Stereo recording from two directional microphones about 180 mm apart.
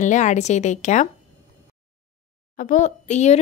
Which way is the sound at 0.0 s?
40° left (ahead or behind).